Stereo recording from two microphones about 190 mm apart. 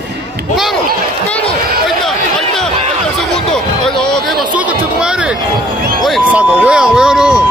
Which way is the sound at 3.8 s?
5° left (ahead or behind).